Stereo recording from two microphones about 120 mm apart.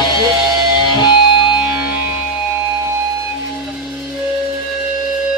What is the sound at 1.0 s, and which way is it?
Music, 40° left (ahead or behind).